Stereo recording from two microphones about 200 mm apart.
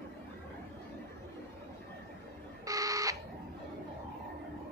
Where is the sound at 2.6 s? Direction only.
15° right (ahead or behind).